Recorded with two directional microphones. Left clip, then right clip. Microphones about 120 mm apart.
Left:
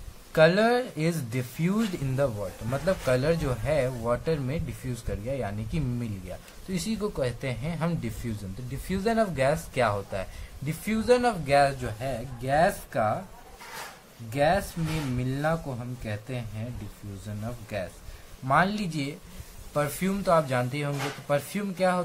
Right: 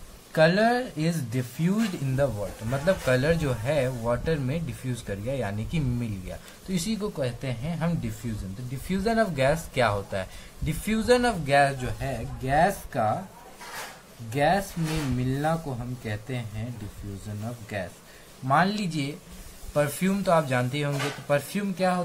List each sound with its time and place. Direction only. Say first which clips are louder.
0.3 s speech: even; 50° left (ahead or behind)
2.7 s speech: right 2 dB; 20° left (ahead or behind)
7.0 s speech: left 1 dB; 45° left (ahead or behind)
8.8 s speech: right 1 dB; 25° left (ahead or behind); by 13.1 s 55° left (ahead or behind)
14.3 s speech: right 1 dB; 55° left (ahead or behind)
18.5 s speech: right 1 dB; 45° left (ahead or behind)
19.7 s speech: right 3 dB; 25° left (ahead or behind)
21.5 s speech: even; 40° left (ahead or behind)